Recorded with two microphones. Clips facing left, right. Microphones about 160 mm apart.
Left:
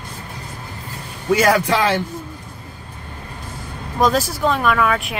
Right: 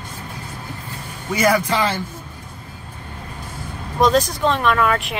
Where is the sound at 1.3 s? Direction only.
75° left (ahead or behind).